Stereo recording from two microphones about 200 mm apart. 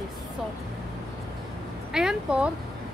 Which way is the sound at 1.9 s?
5° right (ahead or behind).